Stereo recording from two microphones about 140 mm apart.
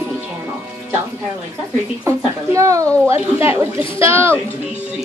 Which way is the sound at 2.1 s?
20° right (ahead or behind).